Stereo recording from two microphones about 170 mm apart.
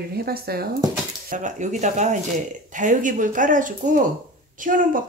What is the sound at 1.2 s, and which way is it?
A woman's voice, 45° right (ahead or behind).